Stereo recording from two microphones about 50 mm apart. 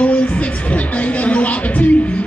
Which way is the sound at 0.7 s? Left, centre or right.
Left.